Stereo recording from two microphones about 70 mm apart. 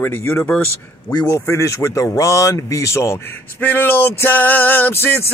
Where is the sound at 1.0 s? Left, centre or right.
Left.